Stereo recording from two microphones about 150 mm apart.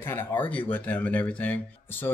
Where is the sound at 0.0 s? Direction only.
15° left (ahead or behind).